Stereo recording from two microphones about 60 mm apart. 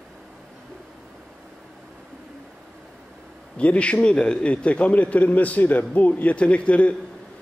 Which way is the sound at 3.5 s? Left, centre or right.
Centre.